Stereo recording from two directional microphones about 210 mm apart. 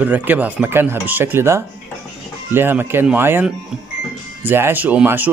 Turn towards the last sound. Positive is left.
turn(degrees=-10)  # may be behind; listen again after turning